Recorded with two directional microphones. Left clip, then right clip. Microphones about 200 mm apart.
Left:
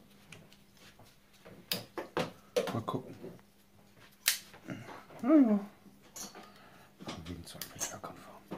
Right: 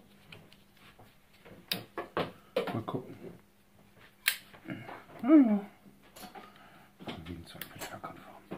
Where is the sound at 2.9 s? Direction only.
25° left (ahead or behind).